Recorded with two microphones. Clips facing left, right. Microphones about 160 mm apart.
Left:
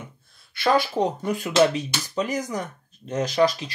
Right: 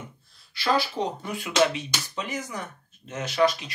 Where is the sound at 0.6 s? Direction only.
45° left (ahead or behind).